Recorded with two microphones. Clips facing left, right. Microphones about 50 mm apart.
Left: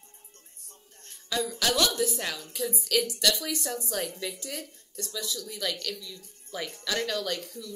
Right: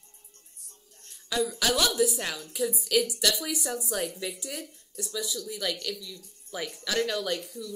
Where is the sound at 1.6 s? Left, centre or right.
Centre.